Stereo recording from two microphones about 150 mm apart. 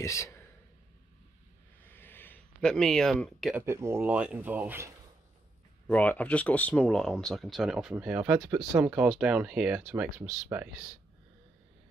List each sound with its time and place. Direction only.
0.0 s speech: 20° left (ahead or behind)
1.9 s a sound: 15° left (ahead or behind)
3.5 s speech: 15° right (ahead or behind)
5.9 s speech: 10° left (ahead or behind)
10.5 s speech: 10° right (ahead or behind)